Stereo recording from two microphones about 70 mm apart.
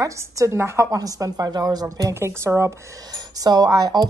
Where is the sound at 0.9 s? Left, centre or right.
Right.